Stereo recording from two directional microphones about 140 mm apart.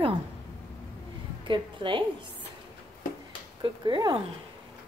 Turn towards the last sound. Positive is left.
turn(degrees=-35)  # may be behind; listen again after turning